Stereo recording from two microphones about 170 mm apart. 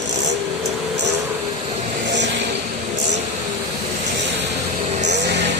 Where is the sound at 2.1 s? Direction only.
90° right.